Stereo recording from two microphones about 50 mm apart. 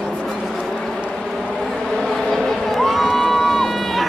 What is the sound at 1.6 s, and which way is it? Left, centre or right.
Crowd, centre.